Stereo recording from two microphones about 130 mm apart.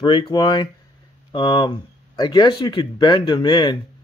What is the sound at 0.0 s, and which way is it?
A man's voice, 40° left (ahead or behind).